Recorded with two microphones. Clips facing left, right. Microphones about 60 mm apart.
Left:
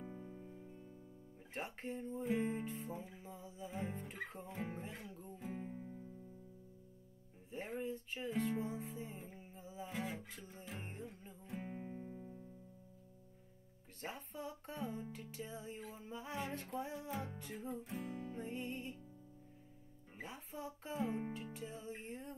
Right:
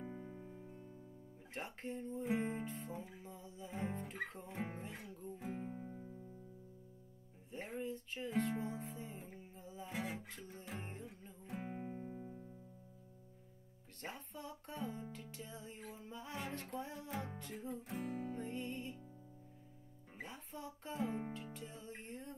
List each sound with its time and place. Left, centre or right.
0.0 s music: centre
1.5 s music: centre
2.2 s music: centre
5.6 s music: centre
7.5 s music: centre
9.9 s music: centre
10.3 s music: centre
11.6 s music: centre
14.0 s music: centre
18.3 s music: centre
20.2 s speech: centre
21.5 s music: centre